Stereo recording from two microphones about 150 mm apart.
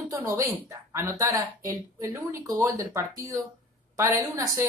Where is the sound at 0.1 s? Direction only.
15° right (ahead or behind).